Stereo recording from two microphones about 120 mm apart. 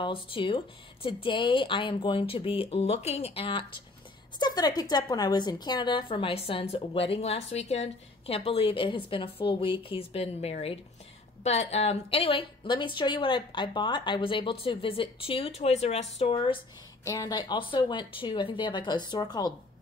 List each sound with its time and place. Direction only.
0.0 s a woman's voice: 45° left (ahead or behind)
4.4 s a woman's voice: 35° left (ahead or behind); by 16.5 s 50° left (ahead or behind)
17.0 s speech: 25° left (ahead or behind)